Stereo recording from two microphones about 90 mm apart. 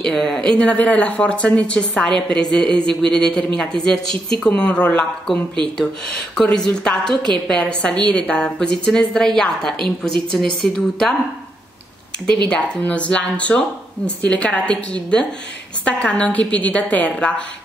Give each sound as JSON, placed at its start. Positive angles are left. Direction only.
{"t": 0.0, "sound": "speech", "side_deg": 10}
{"t": 12.4, "sound": "speech", "side_deg": 10}